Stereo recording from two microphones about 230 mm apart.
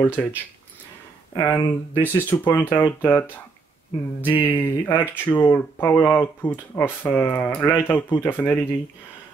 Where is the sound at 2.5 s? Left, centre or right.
Centre.